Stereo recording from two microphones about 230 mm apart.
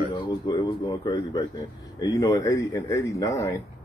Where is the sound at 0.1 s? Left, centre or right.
Centre.